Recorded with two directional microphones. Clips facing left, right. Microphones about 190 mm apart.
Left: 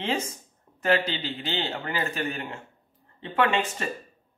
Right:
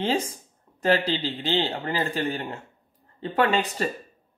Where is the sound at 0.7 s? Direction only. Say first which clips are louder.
Right 2 dB; 35° right (ahead or behind).